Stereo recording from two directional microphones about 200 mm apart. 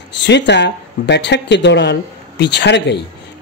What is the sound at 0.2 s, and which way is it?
Speech, 60° left (ahead or behind).